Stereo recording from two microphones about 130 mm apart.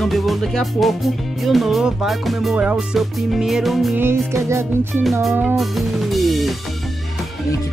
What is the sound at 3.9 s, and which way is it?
Music, 20° right (ahead or behind).